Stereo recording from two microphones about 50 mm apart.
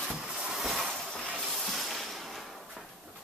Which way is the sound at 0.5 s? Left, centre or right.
Centre.